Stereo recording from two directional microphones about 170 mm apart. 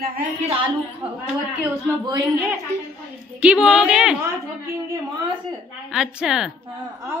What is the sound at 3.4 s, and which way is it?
Speech, 5° right (ahead or behind).